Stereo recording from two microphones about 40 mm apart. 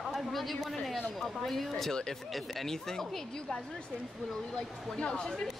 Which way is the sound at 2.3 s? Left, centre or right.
Centre.